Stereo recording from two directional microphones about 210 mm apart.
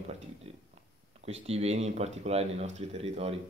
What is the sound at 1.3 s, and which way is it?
Speech, 30° right (ahead or behind).